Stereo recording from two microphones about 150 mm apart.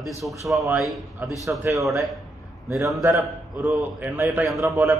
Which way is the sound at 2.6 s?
20° right (ahead or behind).